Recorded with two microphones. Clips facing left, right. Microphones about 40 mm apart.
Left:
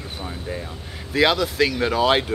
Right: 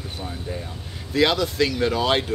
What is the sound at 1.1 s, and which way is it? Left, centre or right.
Speech, centre.